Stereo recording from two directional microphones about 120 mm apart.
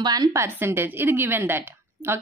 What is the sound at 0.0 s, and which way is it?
A woman's voice, 35° right (ahead or behind).